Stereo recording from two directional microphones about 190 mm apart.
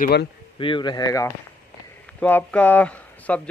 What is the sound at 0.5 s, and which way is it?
A man's voice, 25° left (ahead or behind).